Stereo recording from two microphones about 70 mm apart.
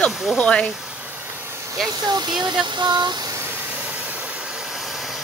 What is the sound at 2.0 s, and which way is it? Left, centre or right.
Speech, right.